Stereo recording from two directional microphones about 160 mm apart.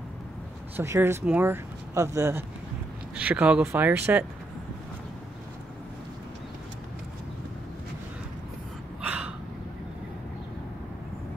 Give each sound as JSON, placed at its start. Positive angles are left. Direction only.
{"t": 0.7, "sound": "speech", "side_deg": -15}
{"t": 9.0, "sound": "gasp", "side_deg": -5}